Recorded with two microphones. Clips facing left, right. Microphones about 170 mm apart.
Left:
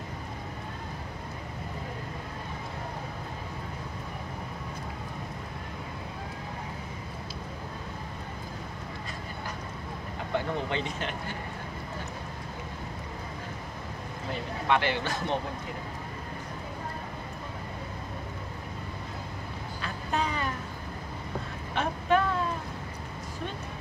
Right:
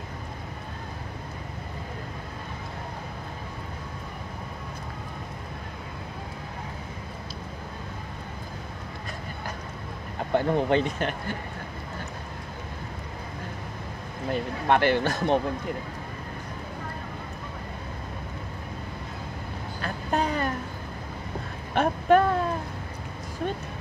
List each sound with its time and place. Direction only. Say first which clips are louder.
10.3 s speech: right 8 dB; 50° right (ahead or behind)
14.7 s speech: right 5 dB; 50° right (ahead or behind)
19.8 s music: right 4 dB; 50° right (ahead or behind)
21.7 s a sound: right 6 dB; 50° right (ahead or behind)